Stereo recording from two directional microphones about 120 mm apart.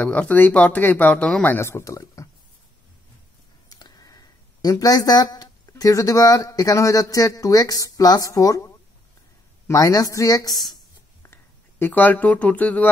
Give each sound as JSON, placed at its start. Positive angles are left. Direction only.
{"t": 0.0, "sound": "speech", "side_deg": 10}
{"t": 3.6, "sound": "a woman's voice", "side_deg": 35}
{"t": 11.8, "sound": "speech", "side_deg": 15}